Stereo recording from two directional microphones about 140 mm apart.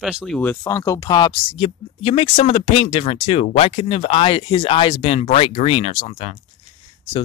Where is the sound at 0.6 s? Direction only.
25° left (ahead or behind).